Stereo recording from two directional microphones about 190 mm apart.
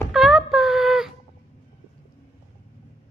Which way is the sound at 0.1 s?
Centre (ahead or behind).